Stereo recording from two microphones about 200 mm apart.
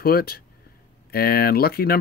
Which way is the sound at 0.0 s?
50° left (ahead or behind).